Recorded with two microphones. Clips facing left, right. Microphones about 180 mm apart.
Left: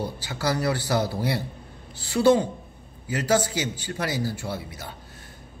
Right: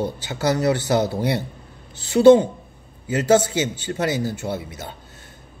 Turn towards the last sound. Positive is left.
turn(degrees=-20)  # may be behind; listen again after turning